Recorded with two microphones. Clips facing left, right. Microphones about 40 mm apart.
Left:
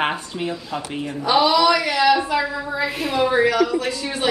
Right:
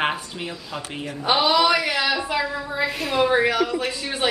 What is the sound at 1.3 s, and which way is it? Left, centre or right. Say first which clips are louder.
Speech: left 3 dB; right.